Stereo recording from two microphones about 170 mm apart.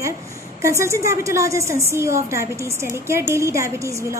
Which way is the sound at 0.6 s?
15° right (ahead or behind).